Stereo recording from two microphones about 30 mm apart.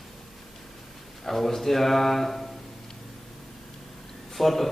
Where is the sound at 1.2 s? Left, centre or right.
Centre.